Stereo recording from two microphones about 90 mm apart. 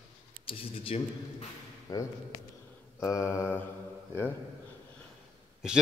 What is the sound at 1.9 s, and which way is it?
Mantra, 40° left (ahead or behind).